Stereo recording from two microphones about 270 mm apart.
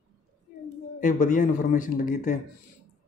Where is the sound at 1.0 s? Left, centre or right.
Left.